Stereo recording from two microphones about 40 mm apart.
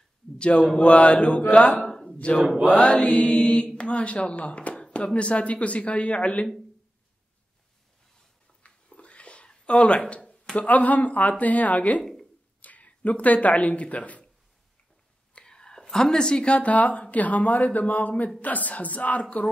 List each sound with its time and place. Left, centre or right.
0.4 s a man's voice: left
1.9 s a sound: centre
2.9 s speech: left
8.6 s a sound: left
10.5 s speech: left
15.3 s whispering: centre
16.4 s speech: left